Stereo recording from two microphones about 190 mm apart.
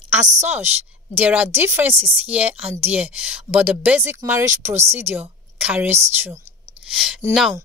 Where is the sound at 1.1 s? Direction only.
5° right (ahead or behind).